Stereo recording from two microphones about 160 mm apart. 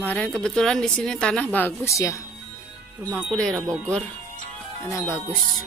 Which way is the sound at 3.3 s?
5° left (ahead or behind).